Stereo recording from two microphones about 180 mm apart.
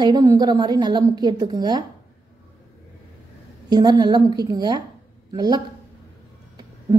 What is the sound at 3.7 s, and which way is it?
A woman's voice, 25° right (ahead or behind).